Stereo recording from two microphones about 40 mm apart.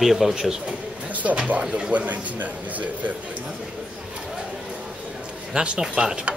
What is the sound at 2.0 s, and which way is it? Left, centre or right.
A man's voice, right.